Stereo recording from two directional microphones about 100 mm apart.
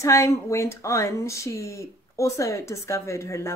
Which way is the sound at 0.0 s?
30° left (ahead or behind).